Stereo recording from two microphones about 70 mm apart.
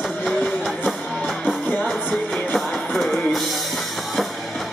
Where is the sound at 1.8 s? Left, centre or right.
Centre.